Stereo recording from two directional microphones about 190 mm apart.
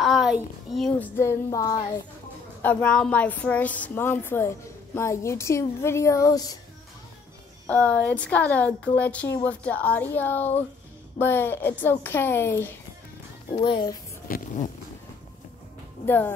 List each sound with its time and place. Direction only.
0.0 s a woman's voice: centre (ahead or behind); by 6.6 s 20° left (ahead or behind)
7.6 s a woman's voice: 5° left (ahead or behind)
13.5 s a child's voice: 25° left (ahead or behind)
14.2 s speech: 45° left (ahead or behind)